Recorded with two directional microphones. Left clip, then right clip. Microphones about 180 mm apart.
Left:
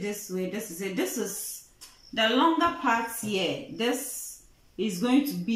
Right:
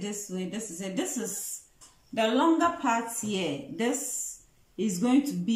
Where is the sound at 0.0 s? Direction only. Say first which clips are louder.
Left 4 dB; 15° right (ahead or behind).